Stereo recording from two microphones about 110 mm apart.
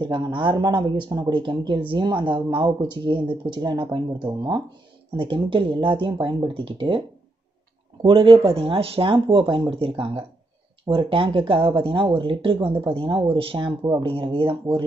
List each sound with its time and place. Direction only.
0.0 s speech: 50° right (ahead or behind)
5.1 s speech: 50° right (ahead or behind)
8.0 s speech: 55° right (ahead or behind)